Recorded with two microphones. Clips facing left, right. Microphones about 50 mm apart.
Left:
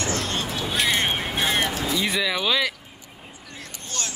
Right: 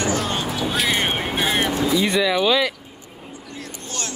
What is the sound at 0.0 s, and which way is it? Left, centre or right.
Music, centre.